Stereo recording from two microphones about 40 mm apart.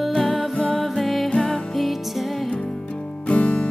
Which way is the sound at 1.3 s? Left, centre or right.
Left.